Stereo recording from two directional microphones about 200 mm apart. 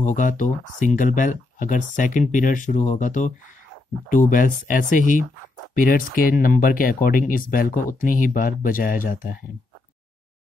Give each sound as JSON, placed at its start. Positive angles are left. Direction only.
{"t": 0.0, "sound": "speech", "side_deg": 40}